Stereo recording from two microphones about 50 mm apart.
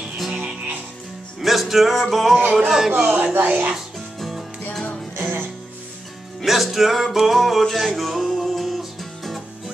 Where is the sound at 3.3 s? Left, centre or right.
Right.